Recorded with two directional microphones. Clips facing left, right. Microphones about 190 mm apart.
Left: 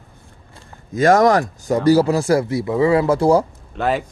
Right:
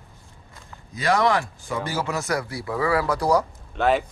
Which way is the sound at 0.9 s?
45° left (ahead or behind).